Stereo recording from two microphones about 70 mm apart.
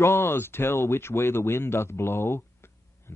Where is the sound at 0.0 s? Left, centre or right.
Left.